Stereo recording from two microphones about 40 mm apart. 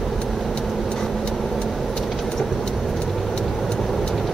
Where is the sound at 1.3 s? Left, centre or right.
Centre.